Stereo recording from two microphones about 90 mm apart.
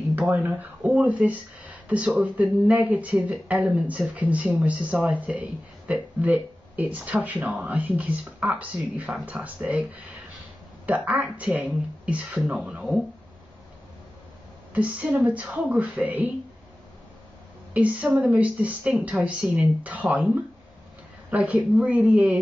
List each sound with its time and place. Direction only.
0.3 s speech: 15° right (ahead or behind)
10.9 s speech: 15° right (ahead or behind)
14.7 s speech: 15° right (ahead or behind)
17.7 s speech: 15° right (ahead or behind)
21.3 s speech: 15° right (ahead or behind)